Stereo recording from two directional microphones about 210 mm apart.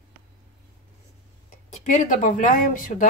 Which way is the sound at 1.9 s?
40° left (ahead or behind).